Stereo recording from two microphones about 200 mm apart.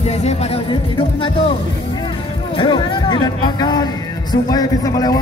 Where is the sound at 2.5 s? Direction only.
25° left (ahead or behind).